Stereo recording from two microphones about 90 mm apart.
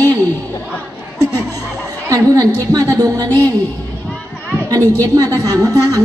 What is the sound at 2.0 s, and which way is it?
A woman's voice, 35° right (ahead or behind).